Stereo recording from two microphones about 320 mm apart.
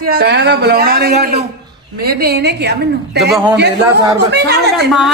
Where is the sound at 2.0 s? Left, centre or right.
Right.